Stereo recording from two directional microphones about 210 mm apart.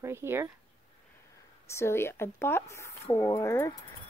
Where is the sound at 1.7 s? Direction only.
15° left (ahead or behind).